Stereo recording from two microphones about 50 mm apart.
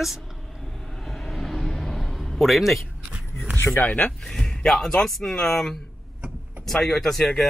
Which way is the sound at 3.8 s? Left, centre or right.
Left.